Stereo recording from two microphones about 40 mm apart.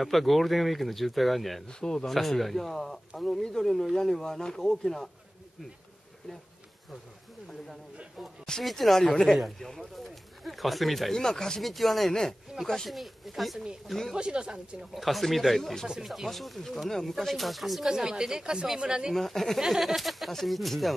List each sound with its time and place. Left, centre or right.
0.0 s speech: centre
1.7 s speech: centre
2.0 s speech: centre
8.6 s speech: centre
11.1 s speech: centre
11.6 s speech: centre
12.1 s speech: centre
12.9 s speech: centre
14.1 s speech: right
14.8 s speech: centre
17.8 s a woman's voice: centre
19.1 s speech: centre
19.6 s speech: centre